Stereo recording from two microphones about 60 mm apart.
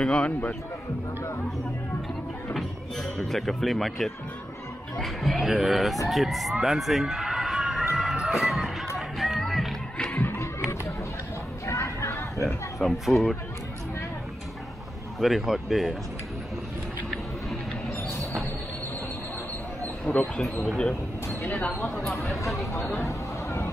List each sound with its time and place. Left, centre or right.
0.0 s speech: centre
2.5 s speech: centre
6.6 s a sound: centre
8.9 s music: centre
10.1 s music: left
11.6 s a sound: left
12.4 s speech: centre
15.1 s speech: centre
20.2 s speech: centre
21.5 s speech: left
23.0 s a sound: left